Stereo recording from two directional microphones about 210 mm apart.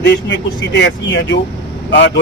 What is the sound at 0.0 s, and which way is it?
Speech, 55° left (ahead or behind).